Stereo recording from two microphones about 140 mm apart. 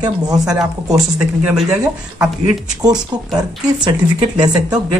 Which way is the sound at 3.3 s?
30° right (ahead or behind).